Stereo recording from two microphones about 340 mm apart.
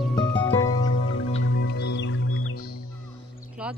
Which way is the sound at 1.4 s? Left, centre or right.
Left.